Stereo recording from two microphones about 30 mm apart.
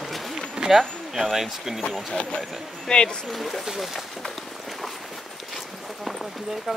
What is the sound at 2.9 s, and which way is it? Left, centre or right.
Speech, left.